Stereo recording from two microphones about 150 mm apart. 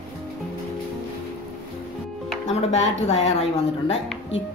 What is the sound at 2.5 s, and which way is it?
Speech, 45° left (ahead or behind).